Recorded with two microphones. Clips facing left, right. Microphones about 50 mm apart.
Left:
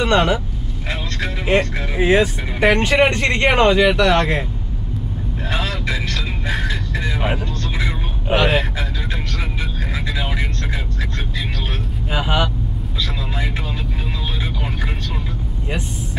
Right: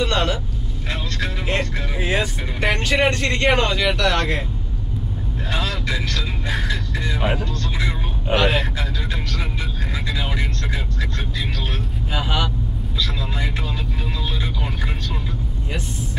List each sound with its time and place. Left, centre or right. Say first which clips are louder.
0.0 s speech: left 5 dB; centre
0.8 s vehicle: left 2 dB; centre
2.0 s speech: left 8 dB; centre
5.5 s speech: left 1 dB; centre
10.0 s speech: left 1 dB; centre
12.1 s speech: left 4 dB; centre